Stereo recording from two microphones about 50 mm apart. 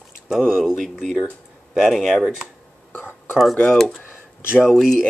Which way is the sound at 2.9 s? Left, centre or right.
Left.